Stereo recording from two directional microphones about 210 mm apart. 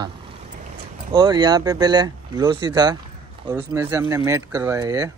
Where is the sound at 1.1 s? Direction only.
20° right (ahead or behind).